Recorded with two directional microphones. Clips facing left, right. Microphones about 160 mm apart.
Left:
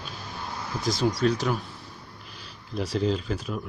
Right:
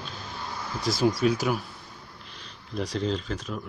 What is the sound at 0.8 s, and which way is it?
Speech, 5° right (ahead or behind).